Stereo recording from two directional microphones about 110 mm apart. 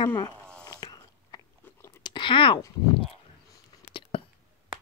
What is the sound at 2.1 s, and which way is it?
Chewing, 45° left (ahead or behind).